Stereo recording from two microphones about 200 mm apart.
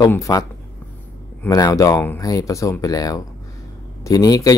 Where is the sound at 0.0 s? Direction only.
15° left (ahead or behind).